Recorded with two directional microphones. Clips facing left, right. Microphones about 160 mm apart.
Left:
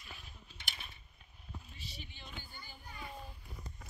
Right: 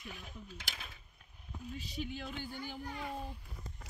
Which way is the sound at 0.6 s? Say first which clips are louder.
Right 2 dB; 90° right.